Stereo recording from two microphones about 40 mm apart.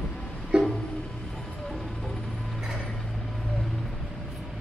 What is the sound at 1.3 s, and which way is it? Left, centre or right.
Music, centre.